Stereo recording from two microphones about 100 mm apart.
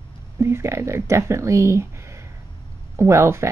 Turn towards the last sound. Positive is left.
turn(degrees=-30)  # may be behind; listen again after turning